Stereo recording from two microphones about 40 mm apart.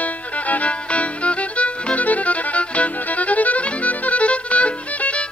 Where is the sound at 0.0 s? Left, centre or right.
Left.